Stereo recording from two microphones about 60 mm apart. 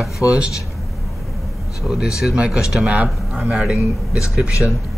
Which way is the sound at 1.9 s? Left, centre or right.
Centre.